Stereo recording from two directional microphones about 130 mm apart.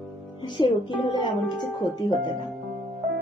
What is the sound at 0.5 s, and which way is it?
Music, 40° left (ahead or behind).